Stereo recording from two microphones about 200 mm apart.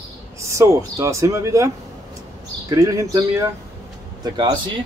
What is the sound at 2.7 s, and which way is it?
Speech, 15° right (ahead or behind).